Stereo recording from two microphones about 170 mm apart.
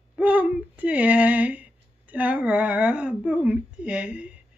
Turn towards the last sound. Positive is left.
turn(degrees=-5)  # may be behind; listen again after turning